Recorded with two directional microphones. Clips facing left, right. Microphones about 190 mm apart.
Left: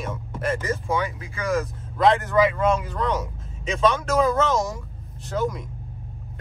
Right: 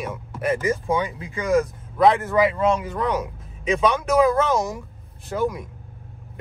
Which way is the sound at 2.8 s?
15° right (ahead or behind).